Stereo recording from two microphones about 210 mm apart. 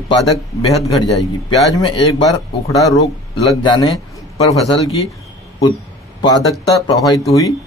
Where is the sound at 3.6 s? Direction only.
20° left (ahead or behind).